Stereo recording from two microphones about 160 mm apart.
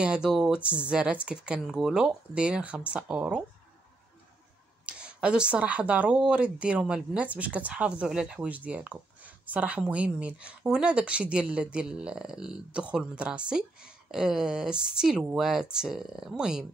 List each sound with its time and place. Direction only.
0.0 s speech: 5° right (ahead or behind)
4.8 s speech: 5° right (ahead or behind)